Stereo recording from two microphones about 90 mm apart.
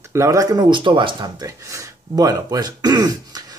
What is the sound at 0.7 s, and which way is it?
Speech, 65° right (ahead or behind).